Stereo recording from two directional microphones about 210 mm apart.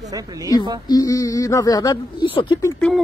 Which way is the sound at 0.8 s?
15° left (ahead or behind).